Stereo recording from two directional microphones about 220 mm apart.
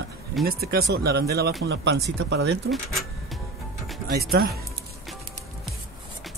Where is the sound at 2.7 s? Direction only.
Centre (ahead or behind).